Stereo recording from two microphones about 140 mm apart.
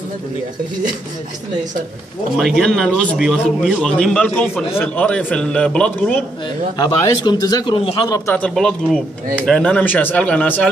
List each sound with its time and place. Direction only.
2.3 s a man's voice: centre (ahead or behind)
6.8 s speech: 25° left (ahead or behind)
7.9 s speech: 20° left (ahead or behind)
8.4 s a man's voice: 5° left (ahead or behind)